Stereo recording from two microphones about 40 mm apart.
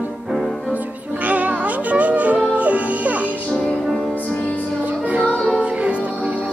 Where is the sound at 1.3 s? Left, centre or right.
Right.